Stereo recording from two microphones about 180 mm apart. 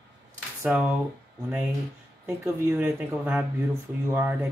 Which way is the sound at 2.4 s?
10° right (ahead or behind).